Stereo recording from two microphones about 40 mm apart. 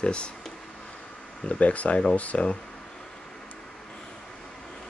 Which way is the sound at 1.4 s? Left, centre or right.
Left.